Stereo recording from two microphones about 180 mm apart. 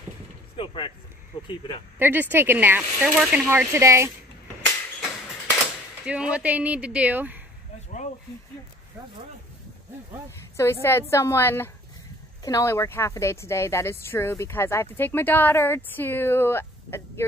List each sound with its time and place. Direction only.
0.6 s vehicle: 30° left (ahead or behind)
1.3 s speech: 25° left (ahead or behind)
2.0 s speech: 10° right (ahead or behind)
6.0 s speech: 5° right (ahead or behind)
10.5 s speech: 15° left (ahead or behind)